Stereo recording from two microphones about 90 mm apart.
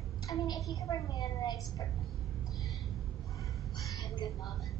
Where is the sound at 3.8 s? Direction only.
40° left (ahead or behind).